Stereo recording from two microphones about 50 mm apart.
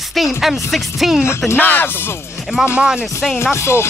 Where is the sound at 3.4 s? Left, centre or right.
Left.